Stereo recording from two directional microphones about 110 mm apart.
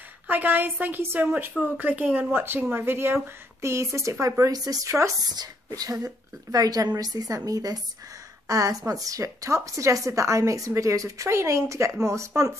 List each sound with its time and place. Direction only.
0.3 s a woman's voice: 15° right (ahead or behind)